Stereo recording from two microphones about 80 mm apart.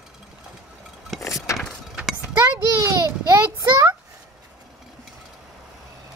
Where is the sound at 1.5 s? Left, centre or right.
Left.